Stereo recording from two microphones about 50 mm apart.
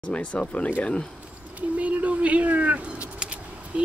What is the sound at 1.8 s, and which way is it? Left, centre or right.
Speech, right.